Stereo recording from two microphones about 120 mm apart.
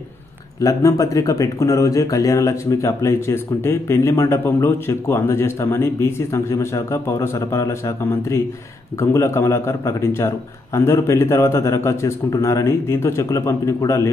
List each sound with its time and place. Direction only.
0.6 s speech: 25° left (ahead or behind)